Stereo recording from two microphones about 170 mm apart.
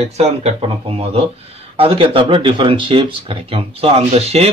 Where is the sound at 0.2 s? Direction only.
40° right (ahead or behind).